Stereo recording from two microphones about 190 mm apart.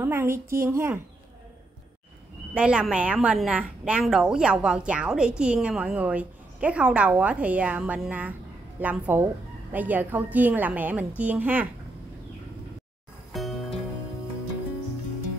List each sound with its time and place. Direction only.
0.0 s a woman's voice: 10° right (ahead or behind)
2.5 s a woman's voice: 5° right (ahead or behind)
13.3 s music: centre (ahead or behind)